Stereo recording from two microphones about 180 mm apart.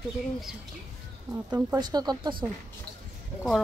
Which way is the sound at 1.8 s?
25° right (ahead or behind).